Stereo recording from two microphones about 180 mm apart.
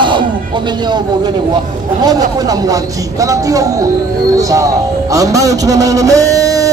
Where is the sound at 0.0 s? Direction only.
25° right (ahead or behind).